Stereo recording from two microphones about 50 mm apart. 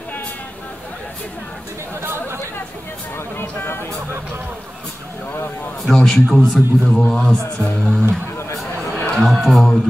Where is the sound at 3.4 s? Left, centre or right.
Left.